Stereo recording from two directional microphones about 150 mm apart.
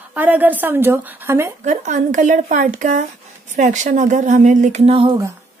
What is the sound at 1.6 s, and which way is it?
Speech, 55° right (ahead or behind).